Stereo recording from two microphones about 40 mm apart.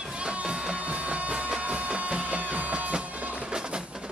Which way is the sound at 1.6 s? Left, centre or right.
Right.